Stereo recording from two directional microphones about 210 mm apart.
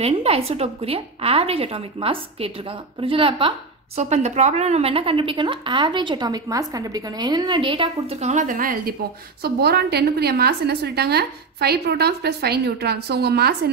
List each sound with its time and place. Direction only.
0.0 s a woman's voice: 30° right (ahead or behind); by 13.6 s 50° right (ahead or behind)